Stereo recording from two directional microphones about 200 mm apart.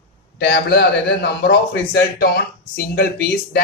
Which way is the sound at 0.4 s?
55° left (ahead or behind).